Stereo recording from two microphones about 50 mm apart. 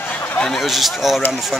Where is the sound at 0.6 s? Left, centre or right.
Centre.